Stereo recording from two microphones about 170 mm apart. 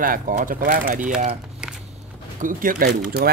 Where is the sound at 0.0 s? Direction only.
50° right (ahead or behind).